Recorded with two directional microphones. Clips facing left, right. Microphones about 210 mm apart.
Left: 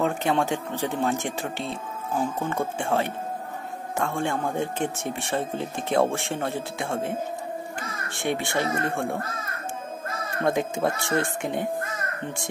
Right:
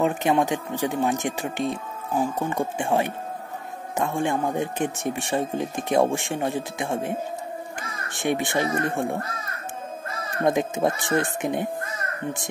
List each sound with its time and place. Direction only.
0.0 s speech: 15° right (ahead or behind)
10.4 s speech: 20° right (ahead or behind)